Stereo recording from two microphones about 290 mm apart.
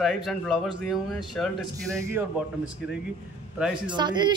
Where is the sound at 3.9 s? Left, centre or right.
Centre.